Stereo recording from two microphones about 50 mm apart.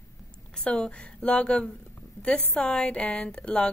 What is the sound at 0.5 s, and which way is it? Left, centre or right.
Speech, centre.